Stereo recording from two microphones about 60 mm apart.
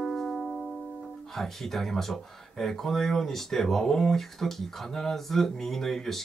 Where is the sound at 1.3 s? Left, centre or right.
Centre.